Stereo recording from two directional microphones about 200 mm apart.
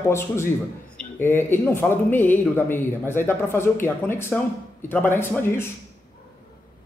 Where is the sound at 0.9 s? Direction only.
10° left (ahead or behind).